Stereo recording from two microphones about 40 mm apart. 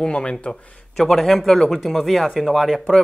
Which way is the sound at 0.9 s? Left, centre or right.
Centre.